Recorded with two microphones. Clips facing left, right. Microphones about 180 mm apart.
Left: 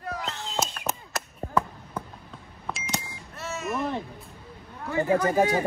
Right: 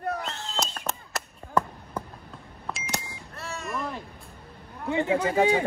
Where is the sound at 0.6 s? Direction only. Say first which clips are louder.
Left 2 dB; 5° left (ahead or behind).